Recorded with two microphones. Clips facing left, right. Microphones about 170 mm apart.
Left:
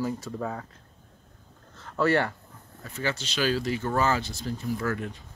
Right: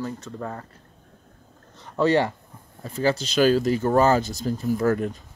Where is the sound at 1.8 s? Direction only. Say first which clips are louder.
Right 4 dB; 20° right (ahead or behind).